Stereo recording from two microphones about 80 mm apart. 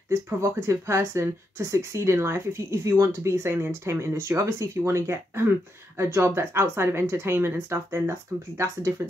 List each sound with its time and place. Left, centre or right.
0.1 s speech: right